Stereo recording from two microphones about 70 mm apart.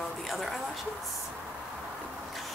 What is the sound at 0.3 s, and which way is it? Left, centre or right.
Speech, centre.